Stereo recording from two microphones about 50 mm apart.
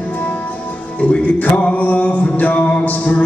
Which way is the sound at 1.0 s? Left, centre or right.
Left.